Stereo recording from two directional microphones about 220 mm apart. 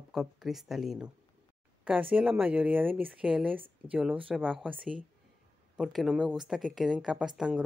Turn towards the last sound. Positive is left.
turn(degrees=-5)  # may be behind; listen again after turning